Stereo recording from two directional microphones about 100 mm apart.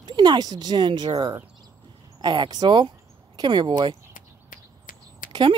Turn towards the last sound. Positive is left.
turn(degrees=-55)  # may be behind; listen again after turning